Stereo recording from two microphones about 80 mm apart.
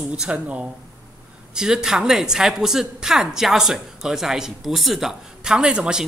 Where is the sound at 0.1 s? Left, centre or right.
Centre.